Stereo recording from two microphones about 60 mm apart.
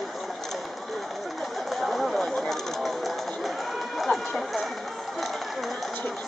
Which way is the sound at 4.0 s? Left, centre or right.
Centre.